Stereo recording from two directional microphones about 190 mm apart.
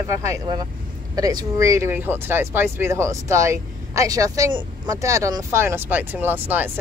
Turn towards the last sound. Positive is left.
turn(degrees=-10)  # may be behind; listen again after turning